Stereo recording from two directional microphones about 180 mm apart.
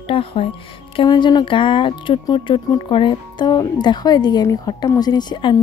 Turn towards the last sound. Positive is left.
turn(degrees=25)  # may be behind; listen again after turning